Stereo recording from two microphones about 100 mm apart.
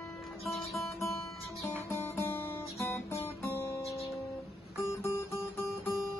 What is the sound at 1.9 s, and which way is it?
Guitar, 20° left (ahead or behind).